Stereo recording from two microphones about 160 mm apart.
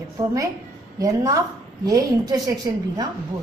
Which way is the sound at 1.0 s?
20° right (ahead or behind).